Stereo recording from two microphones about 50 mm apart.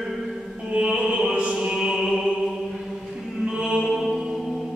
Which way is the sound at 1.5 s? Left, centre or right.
Centre.